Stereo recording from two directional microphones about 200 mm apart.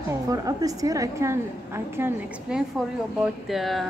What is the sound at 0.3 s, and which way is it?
A woman's voice, 15° right (ahead or behind).